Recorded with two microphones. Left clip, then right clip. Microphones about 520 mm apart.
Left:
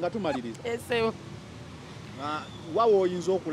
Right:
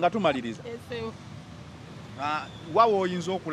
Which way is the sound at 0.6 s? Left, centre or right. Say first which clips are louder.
Left 8 dB; left.